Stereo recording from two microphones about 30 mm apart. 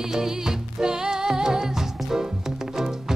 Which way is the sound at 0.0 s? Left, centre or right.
Centre.